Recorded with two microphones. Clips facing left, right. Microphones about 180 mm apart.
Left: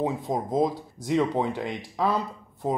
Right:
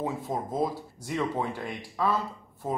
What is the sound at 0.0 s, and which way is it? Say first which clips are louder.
Speech: left 4 dB; 15° left (ahead or behind).